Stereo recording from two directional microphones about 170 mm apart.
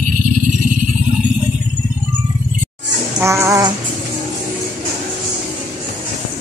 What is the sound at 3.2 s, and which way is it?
Music, 15° right (ahead or behind).